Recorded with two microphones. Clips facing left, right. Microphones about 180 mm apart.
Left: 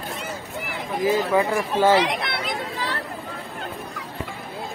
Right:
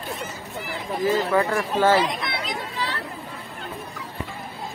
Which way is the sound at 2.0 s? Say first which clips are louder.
Left 1 dB; 70° left (ahead or behind).